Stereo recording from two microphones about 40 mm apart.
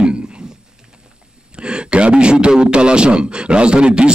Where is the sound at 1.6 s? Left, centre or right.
Right.